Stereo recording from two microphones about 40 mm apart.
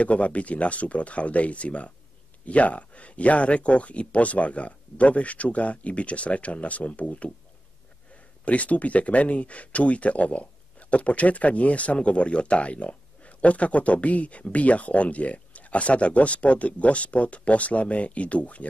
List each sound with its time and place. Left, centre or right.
0.0 s speech: left
8.5 s speech: left